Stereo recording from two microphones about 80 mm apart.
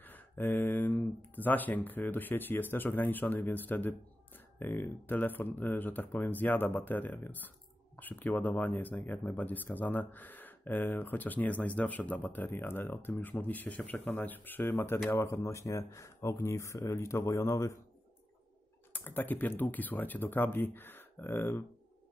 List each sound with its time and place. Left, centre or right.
0.0 s speech: left
15.1 s speech: left
18.9 s speech: left